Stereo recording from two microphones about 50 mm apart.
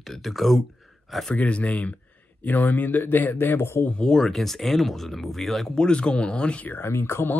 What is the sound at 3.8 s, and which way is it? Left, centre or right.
Speech, centre.